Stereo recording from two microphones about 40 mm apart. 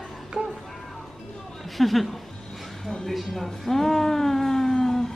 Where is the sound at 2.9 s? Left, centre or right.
Centre.